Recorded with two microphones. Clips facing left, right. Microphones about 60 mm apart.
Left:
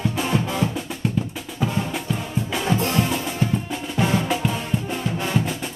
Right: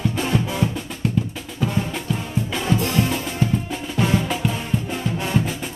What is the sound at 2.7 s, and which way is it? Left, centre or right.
Music, left.